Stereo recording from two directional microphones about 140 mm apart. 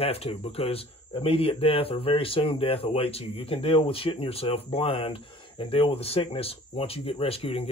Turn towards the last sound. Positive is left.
turn(degrees=45)  # may be behind; listen again after turning